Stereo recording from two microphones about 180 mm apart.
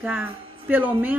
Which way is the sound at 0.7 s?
10° right (ahead or behind).